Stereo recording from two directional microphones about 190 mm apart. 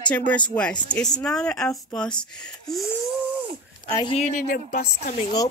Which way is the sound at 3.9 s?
30° left (ahead or behind).